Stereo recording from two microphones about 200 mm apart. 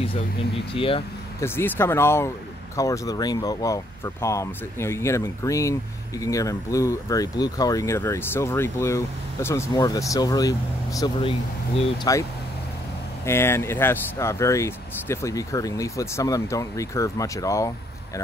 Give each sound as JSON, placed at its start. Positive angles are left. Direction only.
{"t": 0.7, "sound": "speech", "side_deg": 25}
{"t": 1.4, "sound": "speech", "side_deg": 10}
{"t": 13.2, "sound": "speech", "side_deg": 10}